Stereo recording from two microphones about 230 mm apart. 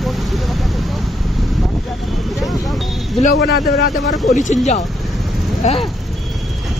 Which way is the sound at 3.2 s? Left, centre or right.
Left.